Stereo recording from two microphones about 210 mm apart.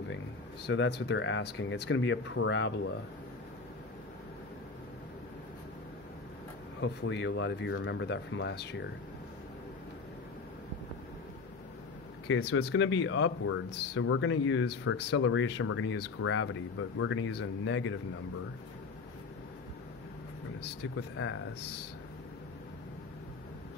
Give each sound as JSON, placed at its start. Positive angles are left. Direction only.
{"t": 0.7, "sound": "speech", "side_deg": 55}
{"t": 6.8, "sound": "speech", "side_deg": 55}
{"t": 12.3, "sound": "speech", "side_deg": 55}
{"t": 15.1, "sound": "speech", "side_deg": 75}
{"t": 20.9, "sound": "speech", "side_deg": 65}